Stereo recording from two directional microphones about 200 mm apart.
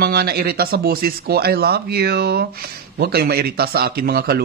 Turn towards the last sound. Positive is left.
turn(degrees=-50)  # may be behind; listen again after turning